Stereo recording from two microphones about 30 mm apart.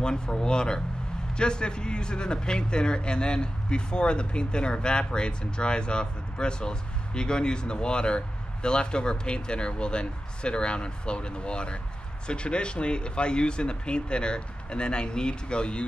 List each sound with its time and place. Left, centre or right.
0.0 s speech: left